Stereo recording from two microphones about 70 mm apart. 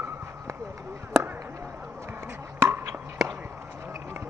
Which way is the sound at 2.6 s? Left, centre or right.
Right.